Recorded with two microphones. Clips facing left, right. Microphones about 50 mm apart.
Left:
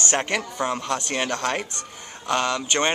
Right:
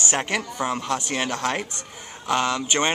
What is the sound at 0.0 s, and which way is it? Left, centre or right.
Speech, centre.